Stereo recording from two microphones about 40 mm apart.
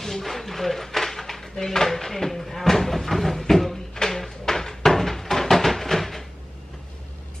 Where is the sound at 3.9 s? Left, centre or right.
Centre.